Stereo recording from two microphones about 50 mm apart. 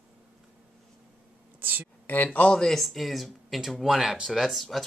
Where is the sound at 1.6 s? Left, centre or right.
Right.